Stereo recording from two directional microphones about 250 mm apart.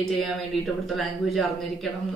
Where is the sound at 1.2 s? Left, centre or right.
Centre.